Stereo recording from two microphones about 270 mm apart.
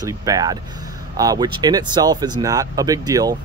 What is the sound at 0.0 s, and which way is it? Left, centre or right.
Speech, centre.